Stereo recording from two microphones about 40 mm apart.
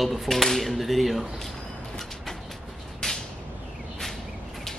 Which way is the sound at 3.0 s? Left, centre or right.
Centre.